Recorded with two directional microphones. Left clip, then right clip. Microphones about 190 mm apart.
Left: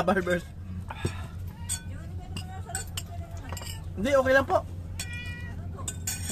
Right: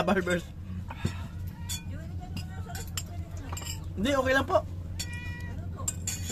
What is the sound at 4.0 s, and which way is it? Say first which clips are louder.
Speech: left 4 dB; 10° right (ahead or behind).